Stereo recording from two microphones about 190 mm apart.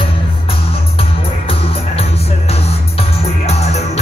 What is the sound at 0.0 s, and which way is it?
Music, 30° left (ahead or behind).